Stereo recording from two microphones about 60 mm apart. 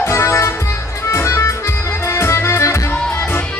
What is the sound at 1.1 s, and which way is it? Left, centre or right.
Accordion, left.